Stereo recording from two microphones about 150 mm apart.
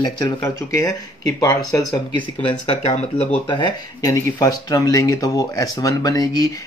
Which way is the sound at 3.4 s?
30° left (ahead or behind).